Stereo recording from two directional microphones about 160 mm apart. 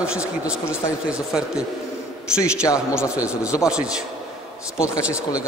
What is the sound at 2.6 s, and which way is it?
Speech, 20° left (ahead or behind).